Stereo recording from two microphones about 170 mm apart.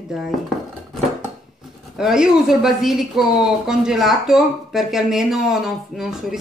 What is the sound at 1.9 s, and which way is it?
Speech, 5° right (ahead or behind).